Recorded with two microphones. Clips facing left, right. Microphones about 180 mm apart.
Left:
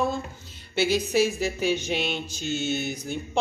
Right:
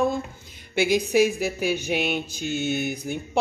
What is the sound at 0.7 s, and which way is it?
Speech, 15° right (ahead or behind).